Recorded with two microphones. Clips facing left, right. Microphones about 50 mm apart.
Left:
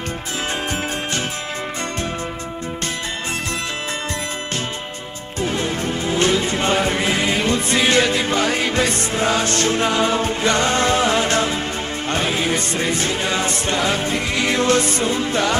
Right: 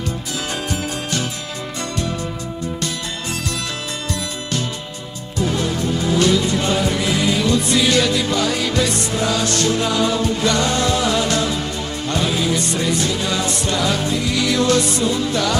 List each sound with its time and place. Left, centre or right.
5.4 s music: left